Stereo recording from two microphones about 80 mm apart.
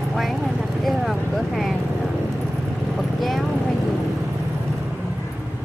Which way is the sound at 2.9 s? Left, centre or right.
Centre.